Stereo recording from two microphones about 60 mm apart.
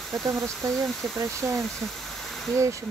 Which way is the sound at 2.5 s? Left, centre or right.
Right.